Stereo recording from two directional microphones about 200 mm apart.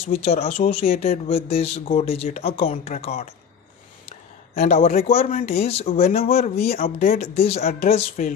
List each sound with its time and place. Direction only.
0.1 s speech: 30° left (ahead or behind)
4.6 s speech: 35° left (ahead or behind)